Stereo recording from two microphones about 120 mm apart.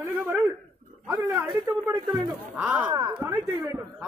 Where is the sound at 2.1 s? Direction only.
15° right (ahead or behind).